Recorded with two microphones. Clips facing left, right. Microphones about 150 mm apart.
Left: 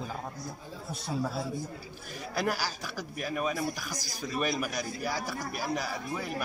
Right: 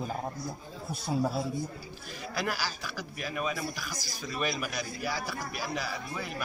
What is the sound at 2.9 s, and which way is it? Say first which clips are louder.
Speech: left 2 dB; 45° left (ahead or behind).